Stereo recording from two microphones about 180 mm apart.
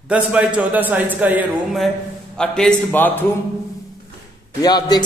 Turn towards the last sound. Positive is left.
turn(degrees=20)  # may be behind; listen again after turning